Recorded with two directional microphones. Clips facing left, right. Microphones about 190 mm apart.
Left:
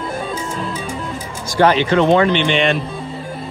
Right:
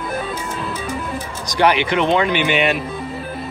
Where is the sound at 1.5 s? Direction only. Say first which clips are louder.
Left 3 dB; 15° right (ahead or behind).